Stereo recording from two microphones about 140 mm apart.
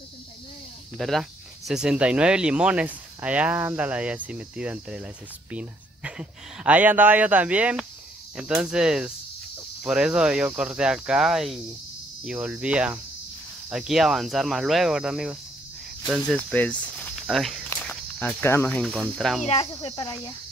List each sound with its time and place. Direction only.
0.9 s speech: centre (ahead or behind)
17.8 s speech: 15° left (ahead or behind)
18.9 s speech: 5° right (ahead or behind)
19.4 s speech: 45° left (ahead or behind)